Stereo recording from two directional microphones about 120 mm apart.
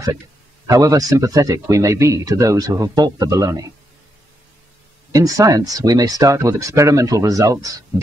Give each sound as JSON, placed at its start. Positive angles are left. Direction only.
{"t": 0.7, "sound": "speech", "side_deg": -30}
{"t": 5.1, "sound": "speech", "side_deg": -30}